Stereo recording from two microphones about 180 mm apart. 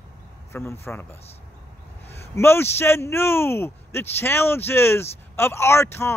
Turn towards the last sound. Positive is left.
turn(degrees=15)  # may be behind; listen again after turning